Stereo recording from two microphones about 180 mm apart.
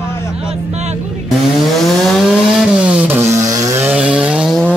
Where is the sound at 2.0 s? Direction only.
Centre (ahead or behind).